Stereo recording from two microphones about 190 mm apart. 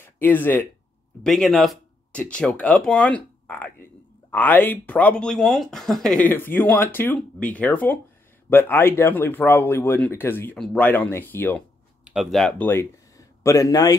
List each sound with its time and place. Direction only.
0.0 s speech: 10° left (ahead or behind)
12.0 s speech: 5° right (ahead or behind); by 13.9 s 20° left (ahead or behind)